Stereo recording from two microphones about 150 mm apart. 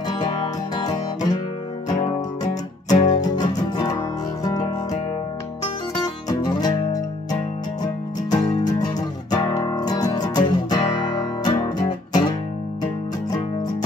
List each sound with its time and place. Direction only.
0.8 s music: 30° left (ahead or behind)
3.0 s music: 25° left (ahead or behind)
6.2 s music: 25° left (ahead or behind)